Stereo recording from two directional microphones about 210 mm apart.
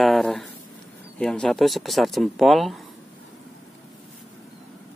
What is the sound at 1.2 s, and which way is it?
Speech, 5° left (ahead or behind).